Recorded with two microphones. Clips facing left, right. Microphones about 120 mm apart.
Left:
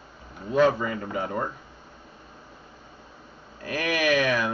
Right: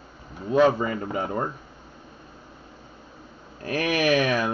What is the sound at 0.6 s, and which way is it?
Speech, 30° right (ahead or behind).